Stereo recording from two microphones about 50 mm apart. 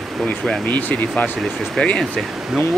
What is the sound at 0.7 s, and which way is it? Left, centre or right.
Speech, left.